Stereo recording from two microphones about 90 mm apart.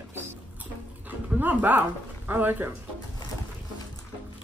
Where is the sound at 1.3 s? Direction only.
20° right (ahead or behind).